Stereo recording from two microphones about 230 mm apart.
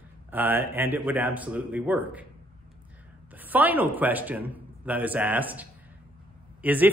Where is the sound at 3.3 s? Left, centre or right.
Centre.